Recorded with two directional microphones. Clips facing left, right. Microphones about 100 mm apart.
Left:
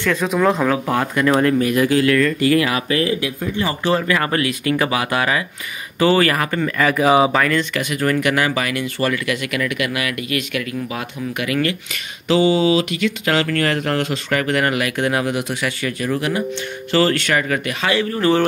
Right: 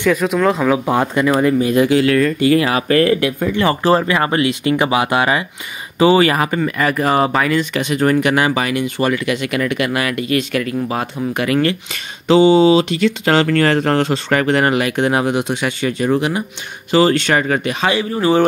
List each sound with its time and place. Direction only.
0.0 s speech: 5° right (ahead or behind)
0.8 s speech: 20° right (ahead or behind)
2.9 s speech: 55° right (ahead or behind)
4.1 s speech: 25° right (ahead or behind)
6.6 s speech: centre (ahead or behind)
7.7 s speech: 25° right (ahead or behind)